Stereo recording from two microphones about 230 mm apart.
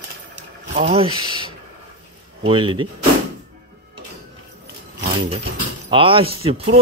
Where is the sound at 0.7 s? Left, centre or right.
Right.